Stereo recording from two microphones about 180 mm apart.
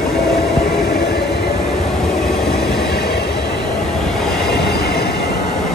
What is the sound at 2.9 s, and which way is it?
Train, 65° left (ahead or behind).